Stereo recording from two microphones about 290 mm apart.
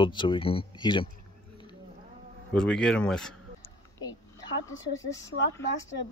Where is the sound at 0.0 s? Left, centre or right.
Centre.